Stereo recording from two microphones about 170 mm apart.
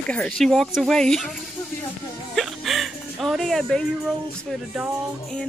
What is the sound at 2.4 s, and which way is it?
Music, centre (ahead or behind).